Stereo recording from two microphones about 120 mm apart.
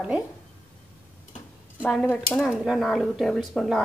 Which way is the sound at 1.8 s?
Centre (ahead or behind).